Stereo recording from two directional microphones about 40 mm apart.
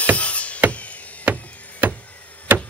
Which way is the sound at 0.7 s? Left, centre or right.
Left.